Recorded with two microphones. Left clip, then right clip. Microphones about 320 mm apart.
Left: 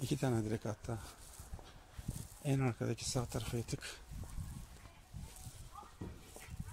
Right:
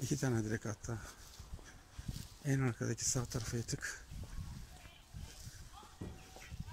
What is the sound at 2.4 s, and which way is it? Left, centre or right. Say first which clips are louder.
Speech: left 1 dB; centre.